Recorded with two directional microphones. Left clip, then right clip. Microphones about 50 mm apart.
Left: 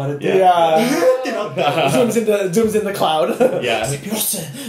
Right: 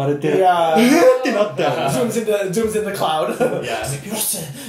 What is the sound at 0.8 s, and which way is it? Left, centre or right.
Speech, right.